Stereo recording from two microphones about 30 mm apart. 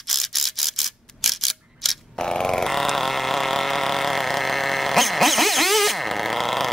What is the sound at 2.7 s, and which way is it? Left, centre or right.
Vehicle, centre.